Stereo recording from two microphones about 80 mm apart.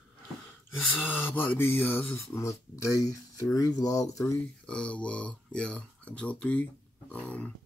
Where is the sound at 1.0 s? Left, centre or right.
Left.